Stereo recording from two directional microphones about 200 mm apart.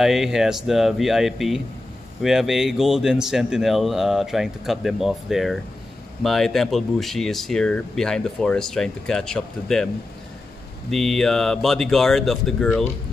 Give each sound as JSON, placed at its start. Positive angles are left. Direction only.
{"t": 0.0, "sound": "speech", "side_deg": 0}
{"t": 10.9, "sound": "speech", "side_deg": 0}